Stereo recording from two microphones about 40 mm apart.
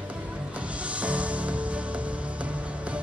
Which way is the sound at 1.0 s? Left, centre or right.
Right.